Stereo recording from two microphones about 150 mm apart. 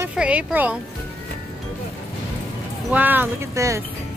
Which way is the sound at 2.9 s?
10° right (ahead or behind).